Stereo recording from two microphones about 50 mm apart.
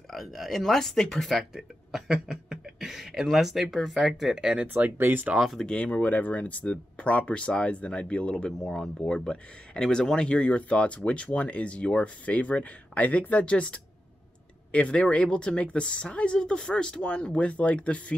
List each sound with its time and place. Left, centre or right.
0.1 s speech: centre
1.5 s speech: centre
4.9 s speech: right
5.7 s speech: left